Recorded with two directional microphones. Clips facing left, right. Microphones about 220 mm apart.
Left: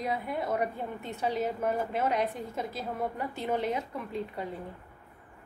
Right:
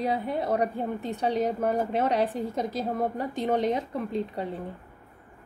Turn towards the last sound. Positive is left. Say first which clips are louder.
# right 5 dB
turn(degrees=-35)  # may be behind; listen again after turning